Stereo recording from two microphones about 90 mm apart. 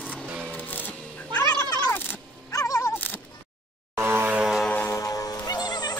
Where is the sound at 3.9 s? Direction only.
25° right (ahead or behind).